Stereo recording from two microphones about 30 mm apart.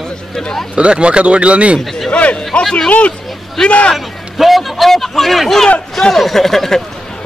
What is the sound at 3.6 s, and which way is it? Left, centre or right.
Speech, centre.